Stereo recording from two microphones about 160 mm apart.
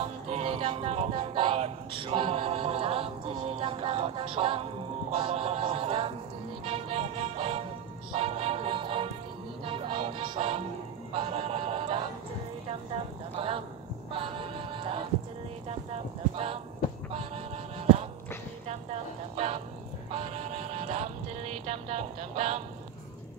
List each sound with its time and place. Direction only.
0.0 s music: 35° right (ahead or behind)
12.6 s a woman's voice: 35° right (ahead or behind)
14.1 s music: 35° right (ahead or behind)
15.9 s clip-clop: 35° right (ahead or behind)
18.7 s vehicle: 40° right (ahead or behind)
20.1 s music: 40° right (ahead or behind)